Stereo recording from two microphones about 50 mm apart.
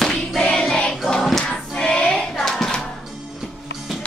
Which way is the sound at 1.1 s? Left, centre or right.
Centre.